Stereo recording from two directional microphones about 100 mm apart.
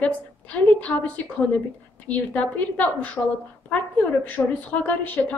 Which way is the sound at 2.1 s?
15° left (ahead or behind).